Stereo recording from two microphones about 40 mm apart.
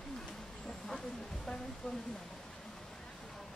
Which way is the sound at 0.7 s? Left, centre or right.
Centre.